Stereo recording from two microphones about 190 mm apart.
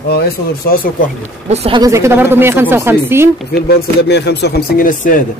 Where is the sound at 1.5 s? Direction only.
30° right (ahead or behind).